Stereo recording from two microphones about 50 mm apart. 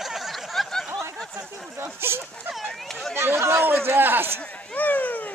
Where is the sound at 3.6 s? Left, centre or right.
Right.